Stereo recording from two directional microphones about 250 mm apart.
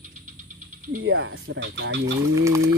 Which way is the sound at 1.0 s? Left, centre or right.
Right.